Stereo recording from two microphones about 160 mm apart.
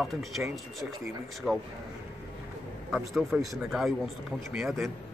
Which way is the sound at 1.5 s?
5° right (ahead or behind).